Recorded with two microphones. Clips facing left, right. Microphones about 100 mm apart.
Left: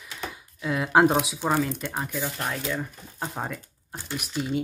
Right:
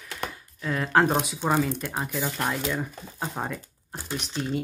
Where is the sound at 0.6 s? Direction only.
5° left (ahead or behind).